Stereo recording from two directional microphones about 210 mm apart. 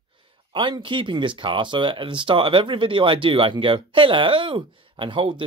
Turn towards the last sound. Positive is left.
turn(degrees=-25)  # may be behind; listen again after turning